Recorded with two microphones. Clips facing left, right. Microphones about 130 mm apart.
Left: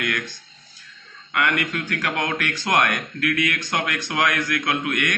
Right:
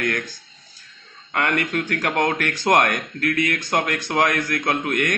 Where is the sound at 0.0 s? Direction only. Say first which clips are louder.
Right 2 dB; 40° right (ahead or behind).